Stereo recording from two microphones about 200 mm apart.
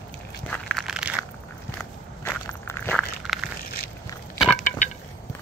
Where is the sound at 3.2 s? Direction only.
Centre (ahead or behind).